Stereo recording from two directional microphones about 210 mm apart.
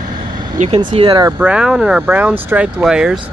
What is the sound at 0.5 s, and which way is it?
Speech, 35° right (ahead or behind).